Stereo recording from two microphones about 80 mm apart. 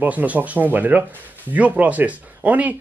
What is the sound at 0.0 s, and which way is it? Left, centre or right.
Speech, centre.